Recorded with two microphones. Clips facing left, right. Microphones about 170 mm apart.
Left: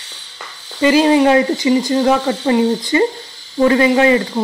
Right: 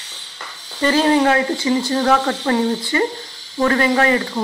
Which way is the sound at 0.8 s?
15° left (ahead or behind).